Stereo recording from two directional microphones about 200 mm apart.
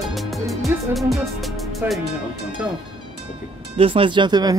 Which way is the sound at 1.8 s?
10° right (ahead or behind).